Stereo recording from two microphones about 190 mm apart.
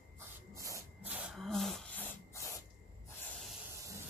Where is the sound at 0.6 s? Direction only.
15° right (ahead or behind).